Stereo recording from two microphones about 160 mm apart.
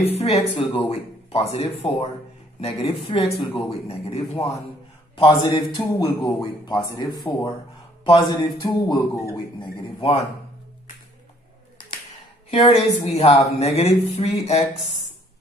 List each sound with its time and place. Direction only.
0.0 s speech: 40° left (ahead or behind); by 9.2 s 25° left (ahead or behind)
9.6 s a sound: 35° left (ahead or behind)
12.4 s speech: 35° left (ahead or behind)